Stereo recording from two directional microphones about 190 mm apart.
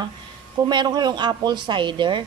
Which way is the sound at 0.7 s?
25° right (ahead or behind).